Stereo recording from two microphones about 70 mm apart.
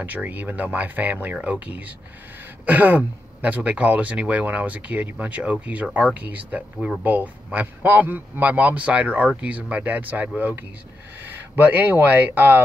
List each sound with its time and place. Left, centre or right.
0.0 s speech: right